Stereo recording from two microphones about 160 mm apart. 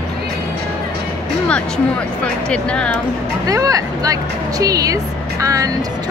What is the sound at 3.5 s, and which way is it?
Vehicle, 20° right (ahead or behind).